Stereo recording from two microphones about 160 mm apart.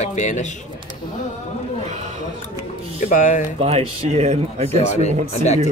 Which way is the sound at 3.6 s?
40° right (ahead or behind).